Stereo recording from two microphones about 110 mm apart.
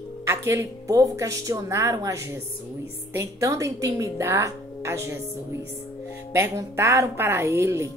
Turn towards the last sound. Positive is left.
turn(degrees=-25)  # may be behind; listen again after turning